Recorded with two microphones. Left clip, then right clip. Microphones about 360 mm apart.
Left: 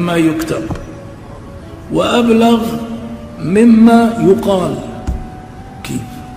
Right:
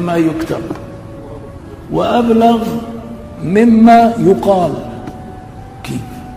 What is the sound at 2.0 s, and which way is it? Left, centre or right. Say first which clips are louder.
Speech: even; centre.